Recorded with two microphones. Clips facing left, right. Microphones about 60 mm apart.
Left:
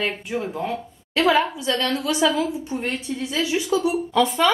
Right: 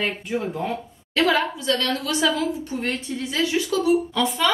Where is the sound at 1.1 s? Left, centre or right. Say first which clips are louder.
Left 2 dB; centre.